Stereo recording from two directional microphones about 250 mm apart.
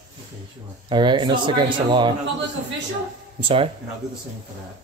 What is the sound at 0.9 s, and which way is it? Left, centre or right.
Speech, centre.